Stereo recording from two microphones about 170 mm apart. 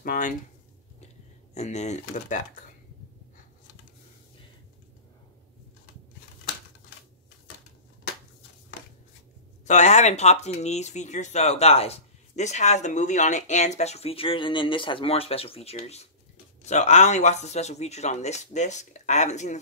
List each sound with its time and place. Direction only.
0.0 s speech: 55° left (ahead or behind)
1.5 s speech: 40° left (ahead or behind)
9.7 s speech: 45° left (ahead or behind)